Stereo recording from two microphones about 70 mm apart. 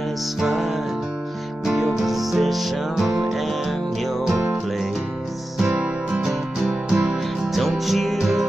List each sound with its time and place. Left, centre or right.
0.4 s music: centre
5.8 s music: centre